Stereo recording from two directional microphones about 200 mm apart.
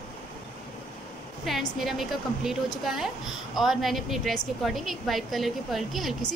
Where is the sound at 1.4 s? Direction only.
Centre (ahead or behind).